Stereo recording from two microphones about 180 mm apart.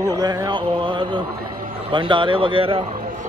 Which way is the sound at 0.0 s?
20° right (ahead or behind).